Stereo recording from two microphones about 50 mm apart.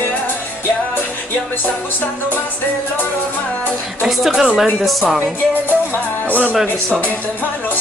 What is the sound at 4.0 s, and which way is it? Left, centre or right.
Speech, centre.